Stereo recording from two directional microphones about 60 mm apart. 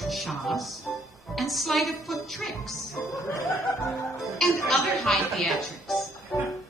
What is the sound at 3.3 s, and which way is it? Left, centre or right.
Music, left.